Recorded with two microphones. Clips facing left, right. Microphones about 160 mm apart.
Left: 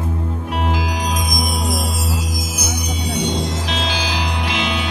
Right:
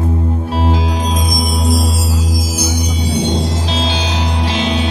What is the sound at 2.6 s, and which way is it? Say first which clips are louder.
Music: right 4 dB; 30° right (ahead or behind).